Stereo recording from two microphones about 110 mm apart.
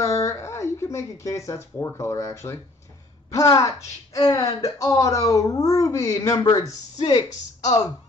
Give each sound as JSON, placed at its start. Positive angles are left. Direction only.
{"t": 0.0, "sound": "speech", "side_deg": 25}